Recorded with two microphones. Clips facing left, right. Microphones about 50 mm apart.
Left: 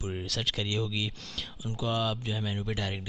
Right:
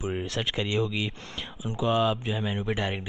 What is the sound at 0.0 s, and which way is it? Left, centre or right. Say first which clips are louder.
Speech: right 4 dB; right.